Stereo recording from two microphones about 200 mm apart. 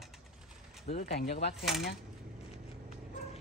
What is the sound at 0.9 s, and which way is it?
Speech, 30° left (ahead or behind).